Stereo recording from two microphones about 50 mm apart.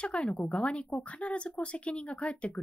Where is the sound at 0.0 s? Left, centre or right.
Left.